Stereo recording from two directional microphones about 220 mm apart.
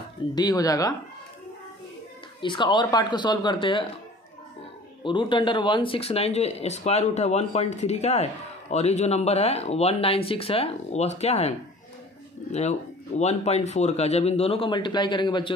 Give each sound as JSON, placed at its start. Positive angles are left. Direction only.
{"t": 0.3, "sound": "speech", "side_deg": 20}
{"t": 2.4, "sound": "speech", "side_deg": 20}
{"t": 5.0, "sound": "speech", "side_deg": 20}
{"t": 13.2, "sound": "speech", "side_deg": 30}